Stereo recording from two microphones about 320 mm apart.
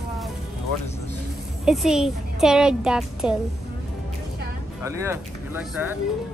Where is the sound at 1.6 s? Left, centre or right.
Centre.